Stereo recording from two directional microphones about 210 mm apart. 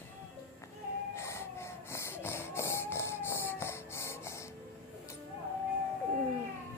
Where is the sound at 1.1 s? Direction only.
10° left (ahead or behind).